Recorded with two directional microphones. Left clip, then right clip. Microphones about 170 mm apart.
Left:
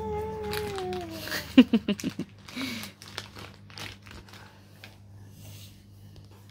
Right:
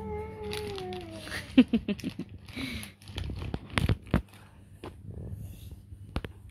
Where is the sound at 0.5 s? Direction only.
15° right (ahead or behind).